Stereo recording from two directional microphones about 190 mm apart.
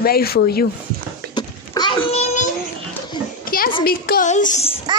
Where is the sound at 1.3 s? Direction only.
25° left (ahead or behind).